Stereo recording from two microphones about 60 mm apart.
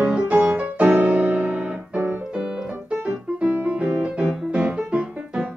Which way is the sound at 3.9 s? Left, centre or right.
Centre.